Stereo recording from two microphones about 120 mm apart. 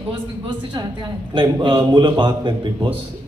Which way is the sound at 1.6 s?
40° right (ahead or behind).